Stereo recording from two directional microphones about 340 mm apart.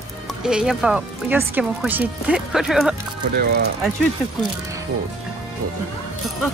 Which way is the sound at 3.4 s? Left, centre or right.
Right.